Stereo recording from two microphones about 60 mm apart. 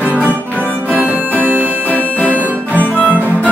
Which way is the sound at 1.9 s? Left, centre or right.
Left.